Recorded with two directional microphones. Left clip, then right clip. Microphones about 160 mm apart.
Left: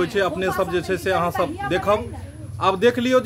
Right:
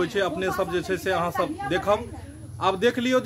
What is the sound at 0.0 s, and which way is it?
A man's voice, 10° left (ahead or behind).